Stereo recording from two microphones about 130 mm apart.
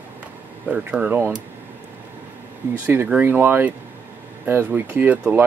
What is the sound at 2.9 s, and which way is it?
Speech, 15° right (ahead or behind).